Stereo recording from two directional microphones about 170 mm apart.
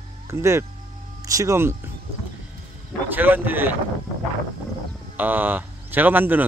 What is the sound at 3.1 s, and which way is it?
Speech, 10° right (ahead or behind).